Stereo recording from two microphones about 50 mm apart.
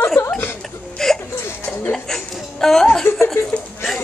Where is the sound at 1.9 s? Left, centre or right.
Centre.